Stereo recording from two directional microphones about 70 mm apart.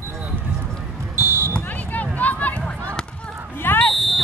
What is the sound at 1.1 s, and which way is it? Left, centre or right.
Basketball bounce, right.